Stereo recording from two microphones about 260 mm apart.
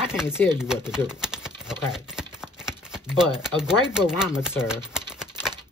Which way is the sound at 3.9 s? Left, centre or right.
Centre.